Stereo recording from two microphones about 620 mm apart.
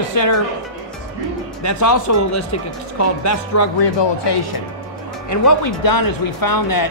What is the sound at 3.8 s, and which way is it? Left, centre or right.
Speech, left.